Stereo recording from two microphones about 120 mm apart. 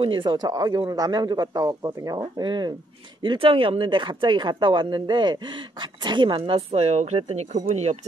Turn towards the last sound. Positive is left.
turn(degrees=-65)  # may be behind; listen again after turning